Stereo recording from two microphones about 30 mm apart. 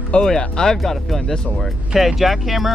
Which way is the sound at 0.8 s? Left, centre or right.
Centre.